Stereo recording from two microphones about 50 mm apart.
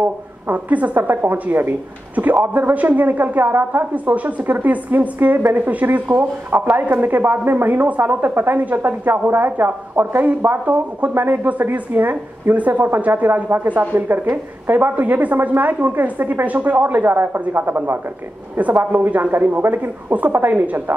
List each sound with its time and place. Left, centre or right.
0.0 s a woman's voice: right
2.1 s a woman's voice: right